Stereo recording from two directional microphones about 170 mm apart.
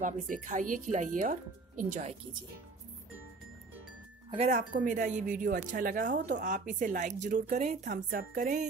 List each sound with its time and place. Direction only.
0.0 s speech: 45° right (ahead or behind)
4.6 s speech: 50° right (ahead or behind)